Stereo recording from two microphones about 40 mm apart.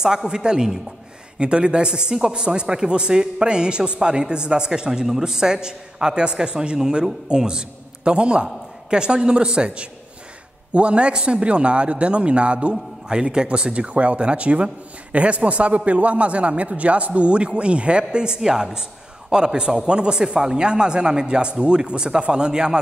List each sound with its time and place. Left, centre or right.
0.0 s a woman's voice: centre
13.7 s a man's voice: right